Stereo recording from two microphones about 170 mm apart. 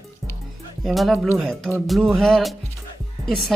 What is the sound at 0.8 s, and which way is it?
A woman's voice, centre (ahead or behind).